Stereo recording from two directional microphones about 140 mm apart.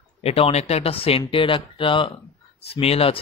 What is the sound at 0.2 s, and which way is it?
Speech, 45° left (ahead or behind).